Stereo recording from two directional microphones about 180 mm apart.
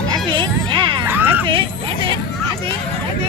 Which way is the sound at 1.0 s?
10° right (ahead or behind).